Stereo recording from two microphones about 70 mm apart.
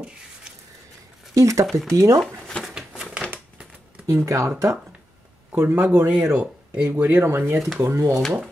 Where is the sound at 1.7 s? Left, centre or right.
Centre.